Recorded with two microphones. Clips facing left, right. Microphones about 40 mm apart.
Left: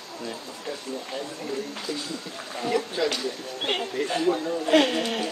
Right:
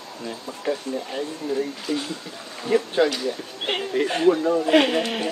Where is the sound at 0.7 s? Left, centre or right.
Right.